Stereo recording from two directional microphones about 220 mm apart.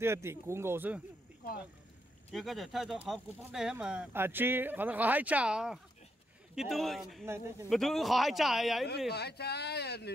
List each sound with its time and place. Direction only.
0.0 s speech: 10° right (ahead or behind)
2.3 s speech: centre (ahead or behind)
7.2 s speech: 10° right (ahead or behind)
7.7 s speech: centre (ahead or behind)
9.1 s speech: 50° left (ahead or behind)